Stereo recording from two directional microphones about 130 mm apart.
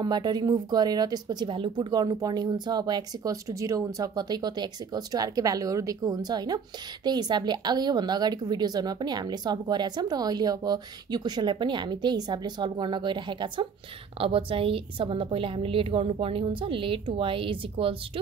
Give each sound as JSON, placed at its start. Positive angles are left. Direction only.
{"t": 0.0, "sound": "a woman's voice", "side_deg": -35}